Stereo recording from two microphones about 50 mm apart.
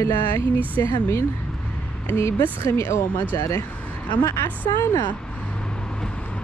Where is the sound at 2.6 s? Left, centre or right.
Left.